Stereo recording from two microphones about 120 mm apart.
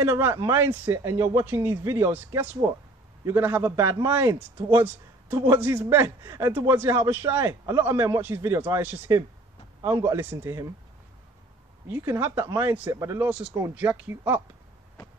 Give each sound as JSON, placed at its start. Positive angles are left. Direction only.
{"t": 0.0, "sound": "a man's voice", "side_deg": -20}
{"t": 11.9, "sound": "a man's voice", "side_deg": -20}
{"t": 13.3, "sound": "a man's voice", "side_deg": -10}